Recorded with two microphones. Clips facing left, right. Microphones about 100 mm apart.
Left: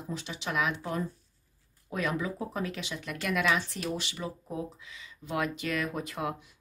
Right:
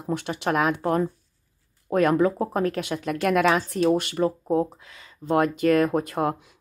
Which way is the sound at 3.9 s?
50° right (ahead or behind).